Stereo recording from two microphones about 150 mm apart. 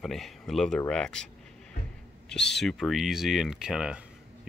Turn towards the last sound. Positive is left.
turn(degrees=-5)  # may be behind; listen again after turning